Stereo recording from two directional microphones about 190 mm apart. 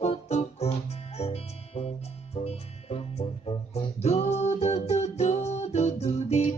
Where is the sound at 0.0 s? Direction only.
35° left (ahead or behind).